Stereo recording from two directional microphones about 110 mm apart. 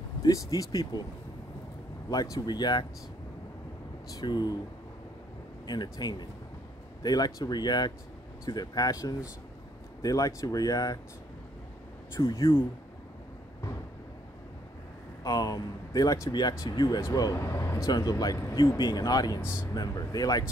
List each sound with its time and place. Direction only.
0.2 s speech: 35° left (ahead or behind)
2.3 s speech: 40° left (ahead or behind)
4.1 s speech: 40° left (ahead or behind)
5.7 s speech: 35° left (ahead or behind)
12.2 s speech: 40° left (ahead or behind)
15.2 s speech: 35° left (ahead or behind)
17.4 s speech: 25° left (ahead or behind)